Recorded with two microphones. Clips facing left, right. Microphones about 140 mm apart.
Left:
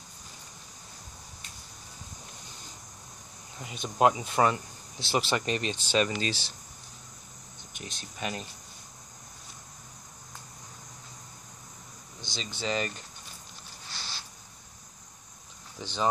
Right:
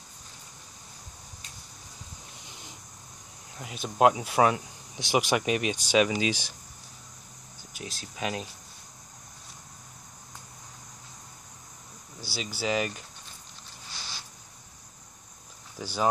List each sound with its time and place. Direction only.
3.5 s speech: centre (ahead or behind)
7.7 s speech: 5° right (ahead or behind)
12.2 s speech: 5° right (ahead or behind)
15.8 s speech: 10° right (ahead or behind)